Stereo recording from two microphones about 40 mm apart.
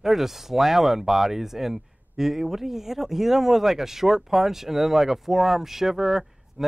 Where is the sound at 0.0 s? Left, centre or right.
Centre.